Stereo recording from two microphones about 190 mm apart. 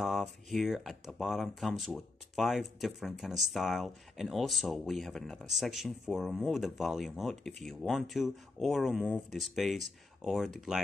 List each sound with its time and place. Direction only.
0.0 s speech: centre (ahead or behind)